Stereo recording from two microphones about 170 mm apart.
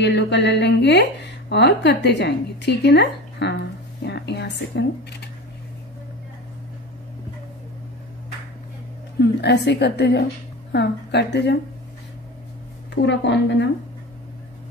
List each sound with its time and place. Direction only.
0.0 s a woman's voice: 90° left
9.2 s a woman's voice: 80° left
12.9 s a woman's voice: 90° left